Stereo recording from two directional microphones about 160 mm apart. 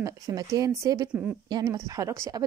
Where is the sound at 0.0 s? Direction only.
20° right (ahead or behind).